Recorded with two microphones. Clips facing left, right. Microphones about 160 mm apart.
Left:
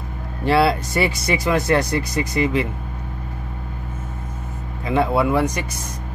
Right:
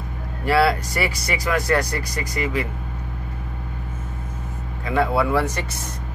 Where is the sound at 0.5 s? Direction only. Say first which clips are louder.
Left 1 dB; 25° left (ahead or behind).